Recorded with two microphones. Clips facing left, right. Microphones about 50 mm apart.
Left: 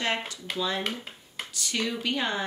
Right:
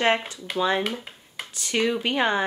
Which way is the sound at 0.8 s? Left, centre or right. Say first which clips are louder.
Right 4 dB; centre.